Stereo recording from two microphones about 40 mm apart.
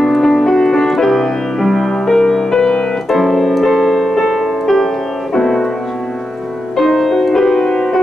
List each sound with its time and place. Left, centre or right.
0.0 s music: centre
3.1 s keyboard: centre
4.0 s piano: centre
4.3 s music: centre
6.8 s music: centre